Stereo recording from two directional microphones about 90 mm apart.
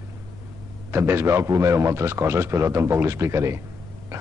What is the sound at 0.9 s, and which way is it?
A man's voice, 25° right (ahead or behind).